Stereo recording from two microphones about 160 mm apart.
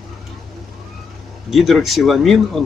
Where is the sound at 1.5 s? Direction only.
Centre (ahead or behind).